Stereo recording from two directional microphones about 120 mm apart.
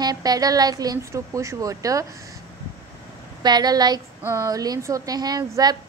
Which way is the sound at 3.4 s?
35° right (ahead or behind).